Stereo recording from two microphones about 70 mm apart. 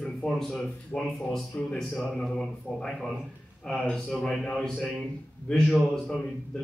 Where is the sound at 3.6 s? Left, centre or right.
Centre.